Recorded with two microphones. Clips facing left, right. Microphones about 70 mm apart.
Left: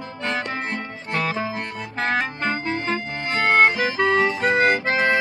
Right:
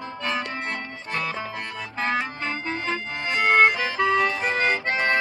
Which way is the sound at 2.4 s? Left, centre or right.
Centre.